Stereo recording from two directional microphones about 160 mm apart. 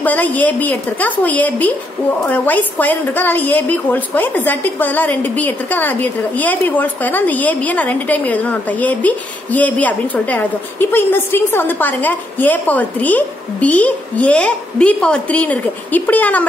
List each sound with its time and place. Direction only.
0.0 s a woman's voice: 10° left (ahead or behind)